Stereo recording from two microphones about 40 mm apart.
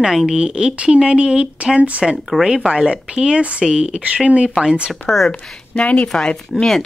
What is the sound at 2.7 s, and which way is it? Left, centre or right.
Speech, right.